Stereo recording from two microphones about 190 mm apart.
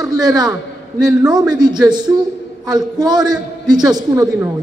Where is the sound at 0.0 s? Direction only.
20° right (ahead or behind).